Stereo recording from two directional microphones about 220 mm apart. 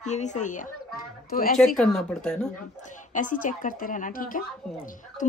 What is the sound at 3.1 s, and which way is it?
Speech, 35° left (ahead or behind).